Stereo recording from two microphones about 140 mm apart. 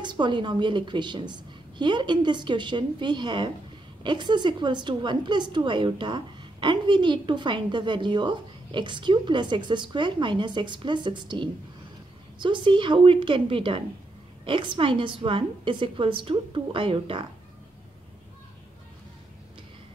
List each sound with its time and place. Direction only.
0.0 s a woman's voice: 35° right (ahead or behind)